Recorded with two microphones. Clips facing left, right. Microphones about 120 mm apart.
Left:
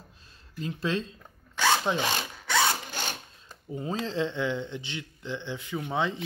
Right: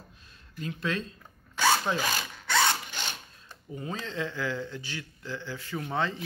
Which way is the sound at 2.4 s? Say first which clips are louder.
Even; 5° left (ahead or behind).